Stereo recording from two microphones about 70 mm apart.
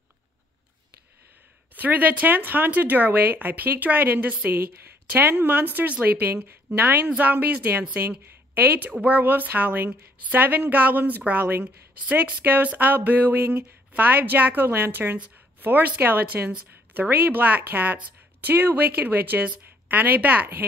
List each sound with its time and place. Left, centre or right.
1.8 s a woman's voice: right